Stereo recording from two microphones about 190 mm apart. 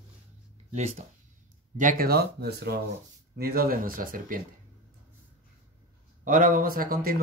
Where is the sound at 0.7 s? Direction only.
35° right (ahead or behind).